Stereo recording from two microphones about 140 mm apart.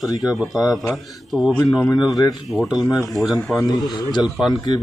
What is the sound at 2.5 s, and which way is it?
Speech, centre (ahead or behind).